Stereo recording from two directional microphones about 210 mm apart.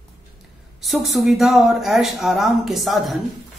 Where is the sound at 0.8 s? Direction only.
Centre (ahead or behind).